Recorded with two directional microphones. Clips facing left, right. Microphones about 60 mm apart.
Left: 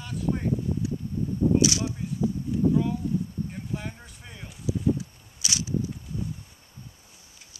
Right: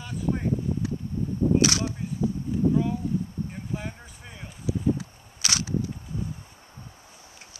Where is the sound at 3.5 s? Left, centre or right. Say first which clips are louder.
Even; centre.